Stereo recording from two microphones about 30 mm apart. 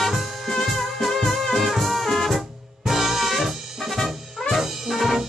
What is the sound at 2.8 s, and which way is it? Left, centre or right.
Music, centre.